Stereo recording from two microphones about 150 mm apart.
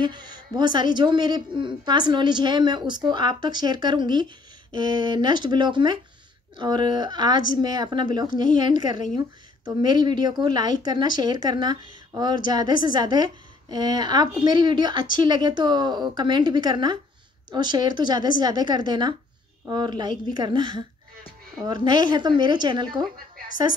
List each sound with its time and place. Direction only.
0.0 s a woman's voice: 30° right (ahead or behind)